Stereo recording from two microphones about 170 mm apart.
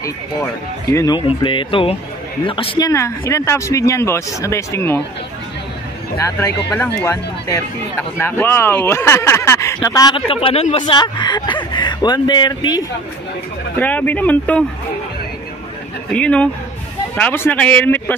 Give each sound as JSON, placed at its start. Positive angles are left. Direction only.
{"t": 0.8, "sound": "speech", "side_deg": 20}
{"t": 2.9, "sound": "speech", "side_deg": 20}
{"t": 6.1, "sound": "speech", "side_deg": 15}
{"t": 13.7, "sound": "speech", "side_deg": 10}
{"t": 16.1, "sound": "speech", "side_deg": 5}